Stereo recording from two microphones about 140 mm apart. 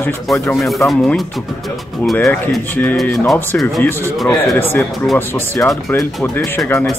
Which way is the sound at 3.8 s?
15° left (ahead or behind).